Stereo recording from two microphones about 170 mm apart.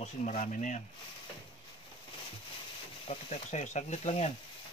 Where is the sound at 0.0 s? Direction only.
45° left (ahead or behind).